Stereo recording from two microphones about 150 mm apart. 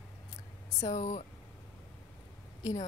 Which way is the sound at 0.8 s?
50° left (ahead or behind).